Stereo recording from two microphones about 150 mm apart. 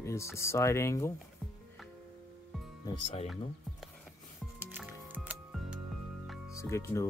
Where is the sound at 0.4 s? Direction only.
20° left (ahead or behind).